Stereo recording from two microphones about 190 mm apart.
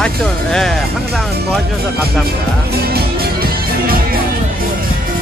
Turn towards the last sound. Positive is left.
turn(degrees=-55)  # may be behind; listen again after turning